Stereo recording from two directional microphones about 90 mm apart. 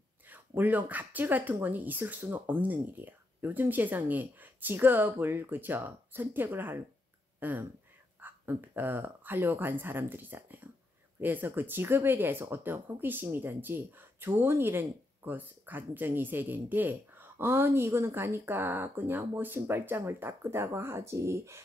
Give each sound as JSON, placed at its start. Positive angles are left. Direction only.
{"t": 0.3, "sound": "speech", "side_deg": -20}